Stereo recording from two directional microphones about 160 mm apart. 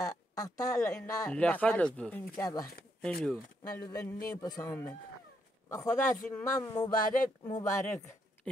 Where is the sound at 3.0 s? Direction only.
5° left (ahead or behind).